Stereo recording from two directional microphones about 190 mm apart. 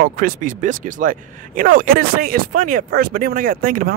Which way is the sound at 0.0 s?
45° right (ahead or behind).